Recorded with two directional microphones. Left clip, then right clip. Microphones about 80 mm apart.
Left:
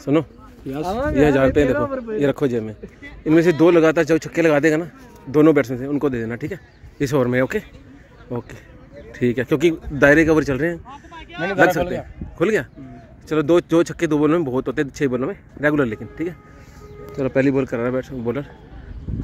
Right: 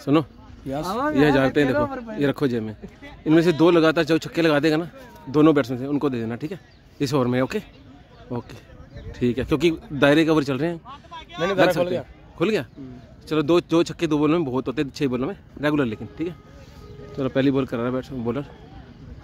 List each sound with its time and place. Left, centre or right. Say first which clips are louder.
0.0 s speech: left 1 dB; right
1.2 s speech: left 4 dB; right
3.0 s speech: left 2 dB; centre
11.1 s a sound: even; right
11.8 s a man's voice: even; right
12.4 s speech: left 4 dB; centre; by 18.5 s right